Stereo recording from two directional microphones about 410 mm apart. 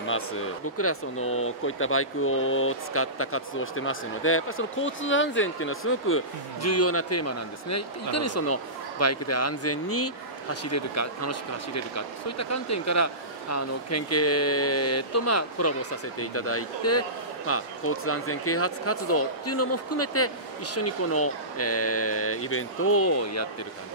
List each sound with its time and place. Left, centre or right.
0.7 s speech: left